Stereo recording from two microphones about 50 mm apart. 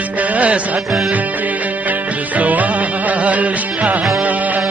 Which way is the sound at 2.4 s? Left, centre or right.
Right.